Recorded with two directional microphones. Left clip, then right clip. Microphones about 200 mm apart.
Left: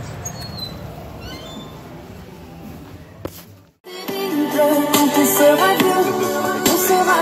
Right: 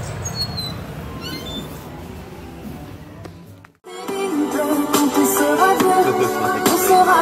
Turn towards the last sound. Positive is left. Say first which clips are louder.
# right 2 dB
turn(degrees=35)  # may be behind; listen again after turning